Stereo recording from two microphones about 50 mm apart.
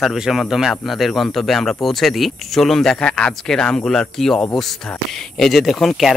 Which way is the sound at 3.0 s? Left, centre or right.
Centre.